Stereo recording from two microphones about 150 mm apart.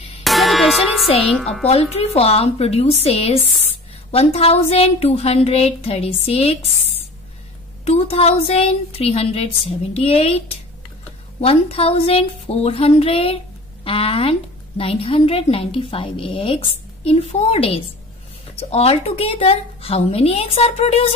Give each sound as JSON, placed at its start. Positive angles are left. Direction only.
{"t": 0.2, "sound": "music", "side_deg": 0}
{"t": 1.2, "sound": "a woman's voice", "side_deg": 0}
{"t": 1.7, "sound": "a woman's voice", "side_deg": 45}
{"t": 7.8, "sound": "a woman's voice", "side_deg": 40}